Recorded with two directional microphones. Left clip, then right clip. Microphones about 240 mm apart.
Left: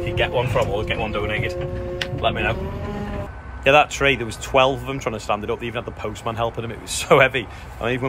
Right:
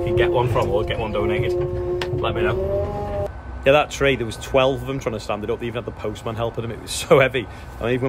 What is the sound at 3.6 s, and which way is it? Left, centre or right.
Speech, centre.